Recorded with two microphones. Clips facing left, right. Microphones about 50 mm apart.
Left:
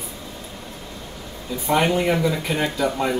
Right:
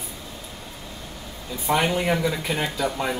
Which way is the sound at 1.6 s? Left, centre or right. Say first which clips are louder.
Left 3 dB; centre.